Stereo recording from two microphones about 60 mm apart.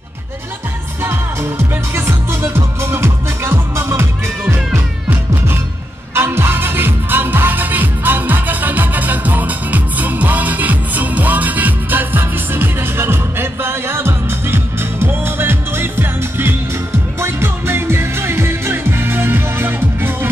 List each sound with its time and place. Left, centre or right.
1.0 s music: right